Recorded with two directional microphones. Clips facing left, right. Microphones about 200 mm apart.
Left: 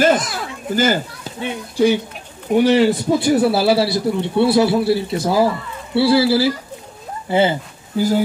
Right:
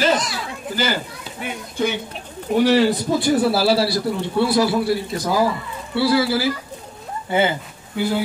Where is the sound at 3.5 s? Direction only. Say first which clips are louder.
Left 2 dB; 20° left (ahead or behind).